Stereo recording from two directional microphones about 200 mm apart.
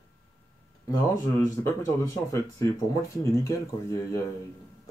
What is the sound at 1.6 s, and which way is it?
Speech, 15° left (ahead or behind).